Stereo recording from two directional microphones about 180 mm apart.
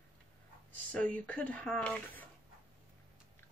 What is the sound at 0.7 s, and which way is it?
Speech, 5° left (ahead or behind).